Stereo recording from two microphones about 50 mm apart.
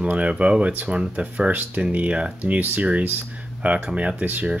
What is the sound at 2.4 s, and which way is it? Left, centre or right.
Speech, right.